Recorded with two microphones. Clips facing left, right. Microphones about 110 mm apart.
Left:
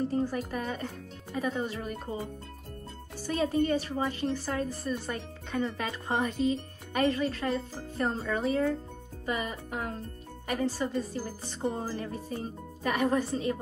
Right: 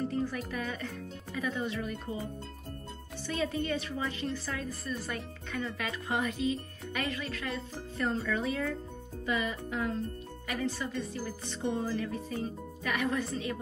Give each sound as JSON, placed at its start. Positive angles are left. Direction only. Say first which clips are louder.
{"t": 0.1, "sound": "speech", "louder": "left 3 dB", "side_deg": 30}
{"t": 3.3, "sound": "speech", "louder": "left 5 dB", "side_deg": 40}